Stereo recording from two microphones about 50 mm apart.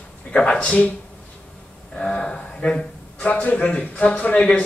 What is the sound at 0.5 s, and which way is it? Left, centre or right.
Speech, left.